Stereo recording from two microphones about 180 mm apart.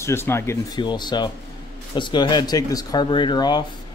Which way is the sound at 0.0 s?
15° left (ahead or behind).